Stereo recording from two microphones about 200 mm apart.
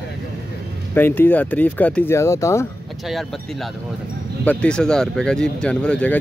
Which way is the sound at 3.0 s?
Centre (ahead or behind).